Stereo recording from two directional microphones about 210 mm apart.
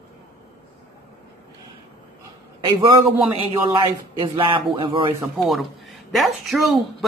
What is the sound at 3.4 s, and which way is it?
Speech, 25° right (ahead or behind).